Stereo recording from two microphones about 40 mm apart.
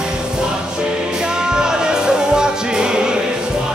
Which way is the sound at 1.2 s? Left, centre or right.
Centre.